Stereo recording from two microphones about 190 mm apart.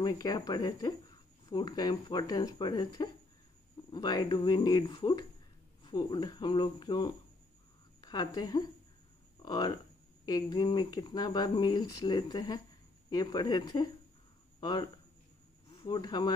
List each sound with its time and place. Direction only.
0.0 s a woman's voice: 20° left (ahead or behind)